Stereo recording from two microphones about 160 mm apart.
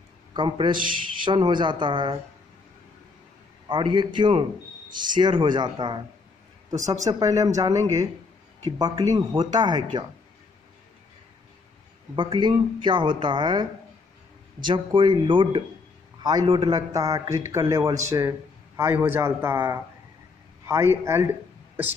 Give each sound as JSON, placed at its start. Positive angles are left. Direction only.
{"t": 0.3, "sound": "a man's voice", "side_deg": -30}
{"t": 3.6, "sound": "a man's voice", "side_deg": -30}
{"t": 12.2, "sound": "a man's voice", "side_deg": -30}
{"t": 14.7, "sound": "a man's voice", "side_deg": -30}